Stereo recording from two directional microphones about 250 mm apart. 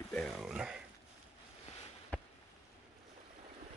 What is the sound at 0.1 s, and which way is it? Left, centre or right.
Speech, centre.